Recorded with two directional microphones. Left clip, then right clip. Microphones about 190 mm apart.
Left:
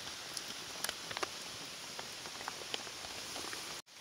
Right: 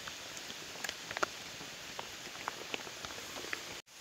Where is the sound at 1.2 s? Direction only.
25° right (ahead or behind).